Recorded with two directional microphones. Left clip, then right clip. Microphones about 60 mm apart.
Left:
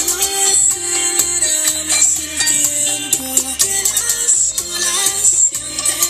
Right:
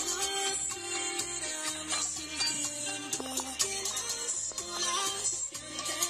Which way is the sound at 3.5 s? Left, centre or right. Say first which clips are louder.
Left 14 dB; right.